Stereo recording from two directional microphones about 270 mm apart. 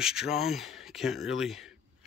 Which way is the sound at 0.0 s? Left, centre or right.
Centre.